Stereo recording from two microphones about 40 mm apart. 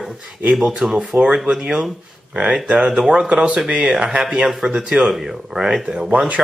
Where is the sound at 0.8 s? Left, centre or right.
Right.